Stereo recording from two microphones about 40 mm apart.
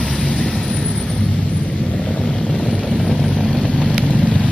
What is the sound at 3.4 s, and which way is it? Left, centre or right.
Vehicle, centre.